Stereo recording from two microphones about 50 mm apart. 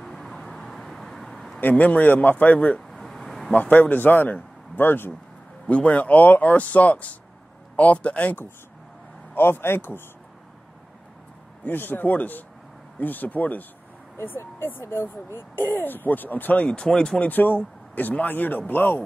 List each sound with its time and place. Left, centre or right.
0.0 s vehicle: centre
1.6 s speech: left
2.9 s a sound: centre
3.5 s speech: left
5.7 s speech: left
9.3 s speech: left
11.6 s speech: left
16.6 s speech: centre
17.2 s speech: left